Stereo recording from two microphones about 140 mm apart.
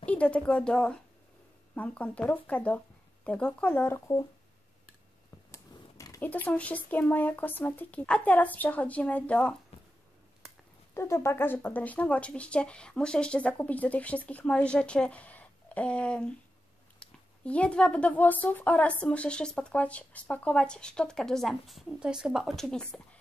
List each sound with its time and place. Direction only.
0.0 s a woman's voice: 10° left (ahead or behind)
5.5 s a sound: 25° left (ahead or behind)
6.2 s speech: 10° left (ahead or behind)
11.0 s speech: 20° left (ahead or behind)